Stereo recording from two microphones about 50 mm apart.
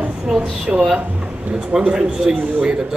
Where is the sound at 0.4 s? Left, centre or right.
Right.